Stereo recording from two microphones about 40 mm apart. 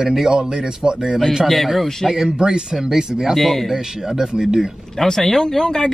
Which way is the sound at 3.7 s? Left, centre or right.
Centre.